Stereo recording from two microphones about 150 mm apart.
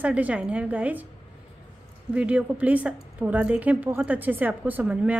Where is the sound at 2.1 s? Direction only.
10° right (ahead or behind).